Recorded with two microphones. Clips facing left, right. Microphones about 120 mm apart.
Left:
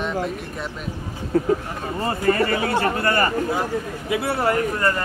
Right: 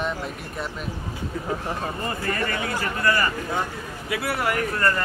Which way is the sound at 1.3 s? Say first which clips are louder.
Left 14 dB; 60° left (ahead or behind).